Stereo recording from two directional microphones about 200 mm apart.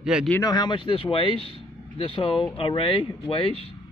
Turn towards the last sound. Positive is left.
turn(degrees=25)  # may be behind; listen again after turning